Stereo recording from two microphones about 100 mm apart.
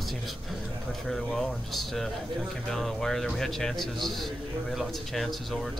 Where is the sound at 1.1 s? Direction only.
Centre (ahead or behind).